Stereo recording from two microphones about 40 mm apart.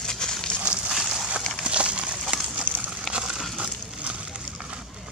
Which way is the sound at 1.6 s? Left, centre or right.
Right.